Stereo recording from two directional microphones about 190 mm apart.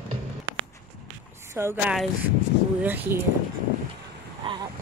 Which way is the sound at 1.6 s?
15° right (ahead or behind).